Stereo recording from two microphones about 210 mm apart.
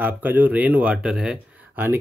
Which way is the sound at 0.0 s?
10° right (ahead or behind).